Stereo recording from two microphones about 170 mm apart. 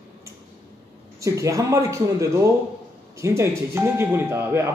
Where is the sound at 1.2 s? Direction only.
20° right (ahead or behind).